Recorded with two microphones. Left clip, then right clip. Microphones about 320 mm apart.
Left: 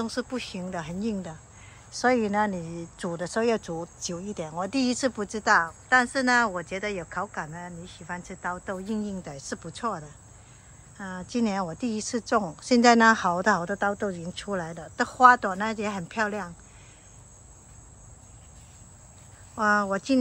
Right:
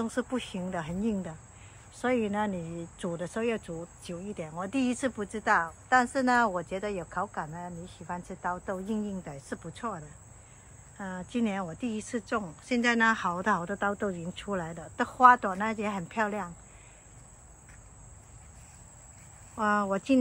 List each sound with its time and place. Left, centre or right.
0.0 s speech: centre
2.6 s speech: left
3.0 s speech: centre
19.5 s speech: centre